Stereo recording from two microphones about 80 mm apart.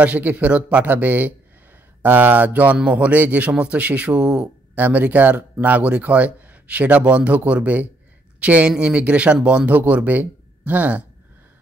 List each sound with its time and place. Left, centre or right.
0.0 s speech: centre